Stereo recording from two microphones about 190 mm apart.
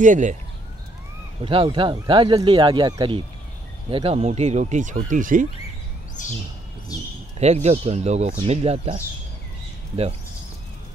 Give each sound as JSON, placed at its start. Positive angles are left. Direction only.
{"t": 0.0, "sound": "speech", "side_deg": -40}
{"t": 1.4, "sound": "speech", "side_deg": -25}
{"t": 6.2, "sound": "a sound", "side_deg": 40}
{"t": 7.3, "sound": "speech", "side_deg": -35}